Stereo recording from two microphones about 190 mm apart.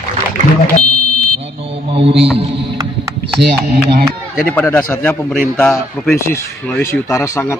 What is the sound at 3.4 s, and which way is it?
Speech, 55° right (ahead or behind).